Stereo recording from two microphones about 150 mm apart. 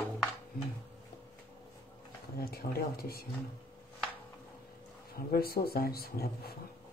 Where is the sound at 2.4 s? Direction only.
90° left.